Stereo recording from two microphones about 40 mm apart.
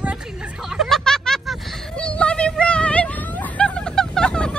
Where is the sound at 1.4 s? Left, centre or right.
Centre.